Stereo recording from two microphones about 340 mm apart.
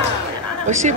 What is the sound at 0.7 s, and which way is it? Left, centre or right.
Speech, right.